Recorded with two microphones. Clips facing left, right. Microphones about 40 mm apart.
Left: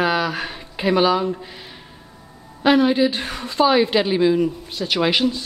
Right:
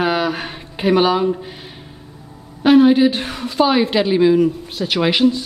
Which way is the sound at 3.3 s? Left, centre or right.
Centre.